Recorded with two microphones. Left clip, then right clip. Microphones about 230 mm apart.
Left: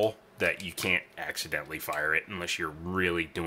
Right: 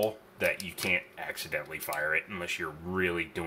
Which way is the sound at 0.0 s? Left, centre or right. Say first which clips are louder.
Left 2 dB; left.